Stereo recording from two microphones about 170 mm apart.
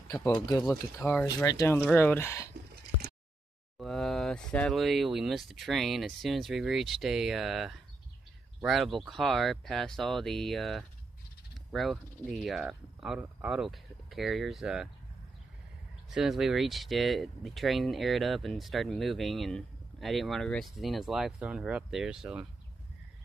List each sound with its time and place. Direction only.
0.9 s speech: 15° left (ahead or behind)
3.7 s speech: centre (ahead or behind)
16.1 s speech: centre (ahead or behind)